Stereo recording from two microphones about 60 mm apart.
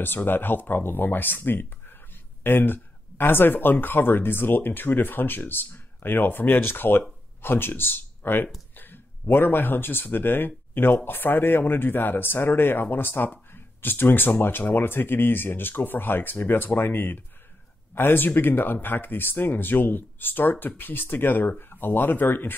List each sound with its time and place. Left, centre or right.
0.0 s speech: left